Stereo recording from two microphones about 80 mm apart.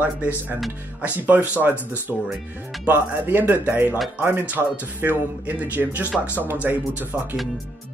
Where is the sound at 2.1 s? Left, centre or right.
Centre.